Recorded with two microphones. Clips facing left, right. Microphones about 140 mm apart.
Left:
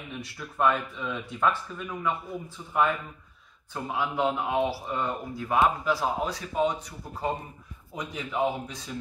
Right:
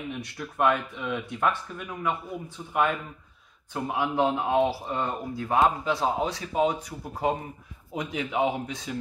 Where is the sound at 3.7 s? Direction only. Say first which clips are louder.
Right 3 dB; 20° right (ahead or behind).